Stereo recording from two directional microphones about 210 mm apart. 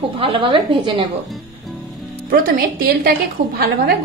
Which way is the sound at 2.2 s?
45° right (ahead or behind).